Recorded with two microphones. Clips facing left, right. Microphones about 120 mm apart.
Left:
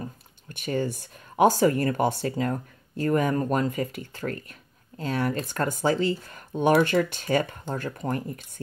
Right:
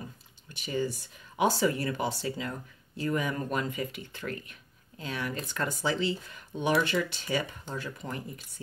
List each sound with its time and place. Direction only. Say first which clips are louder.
0.5 s speech: left 4 dB; 55° left (ahead or behind)